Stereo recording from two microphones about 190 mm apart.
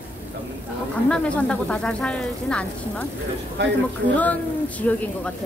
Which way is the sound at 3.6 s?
65° right (ahead or behind).